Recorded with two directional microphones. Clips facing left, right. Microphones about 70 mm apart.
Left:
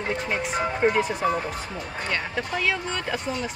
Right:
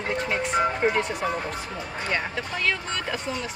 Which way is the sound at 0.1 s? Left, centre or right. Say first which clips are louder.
Right 3 dB; centre.